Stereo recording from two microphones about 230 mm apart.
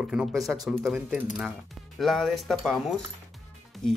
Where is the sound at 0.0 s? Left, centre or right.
Centre.